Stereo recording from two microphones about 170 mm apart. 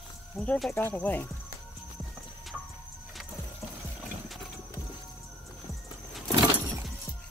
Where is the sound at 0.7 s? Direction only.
10° left (ahead or behind).